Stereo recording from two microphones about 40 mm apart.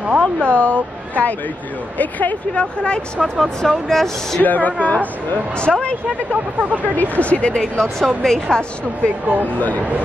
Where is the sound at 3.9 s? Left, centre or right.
Centre.